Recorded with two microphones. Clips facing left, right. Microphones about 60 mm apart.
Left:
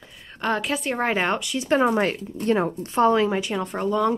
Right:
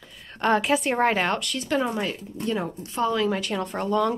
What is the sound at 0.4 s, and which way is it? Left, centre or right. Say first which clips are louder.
Speech: right 3 dB; centre.